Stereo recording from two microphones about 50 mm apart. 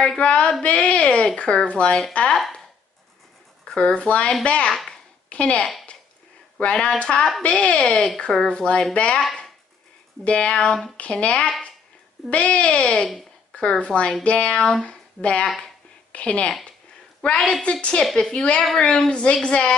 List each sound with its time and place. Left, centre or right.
0.2 s a woman's voice: left
2.3 s speech: centre
3.6 s a woman's voice: centre
4.8 s a sound: left
6.6 s a woman's voice: left
10.2 s a woman's voice: left
10.7 s speech: centre
11.0 s a woman's voice: left
15.4 s a woman's voice: centre
16.1 s a woman's voice: left